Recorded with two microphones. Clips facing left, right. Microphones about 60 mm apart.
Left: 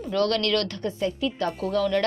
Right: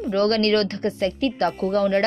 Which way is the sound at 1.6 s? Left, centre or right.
Right.